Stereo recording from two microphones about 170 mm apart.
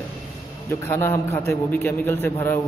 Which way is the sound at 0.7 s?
15° left (ahead or behind).